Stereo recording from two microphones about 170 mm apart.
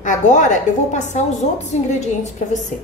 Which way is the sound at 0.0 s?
45° left (ahead or behind).